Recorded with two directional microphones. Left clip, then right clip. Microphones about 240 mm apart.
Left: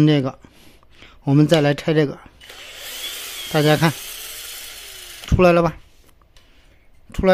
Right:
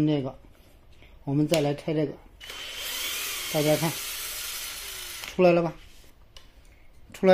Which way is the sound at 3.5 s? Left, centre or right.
Left.